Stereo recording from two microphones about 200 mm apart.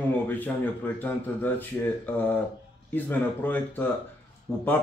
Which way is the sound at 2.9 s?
10° left (ahead or behind).